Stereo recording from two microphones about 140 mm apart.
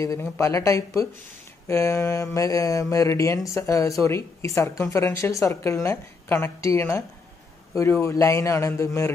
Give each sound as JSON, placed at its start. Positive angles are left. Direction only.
{"t": 0.0, "sound": "a woman's voice", "side_deg": 25}